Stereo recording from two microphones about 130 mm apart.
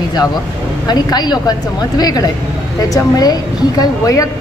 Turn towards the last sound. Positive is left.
turn(degrees=25)  # may be behind; listen again after turning